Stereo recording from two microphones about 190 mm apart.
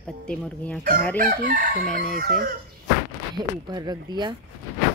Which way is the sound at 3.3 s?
20° right (ahead or behind).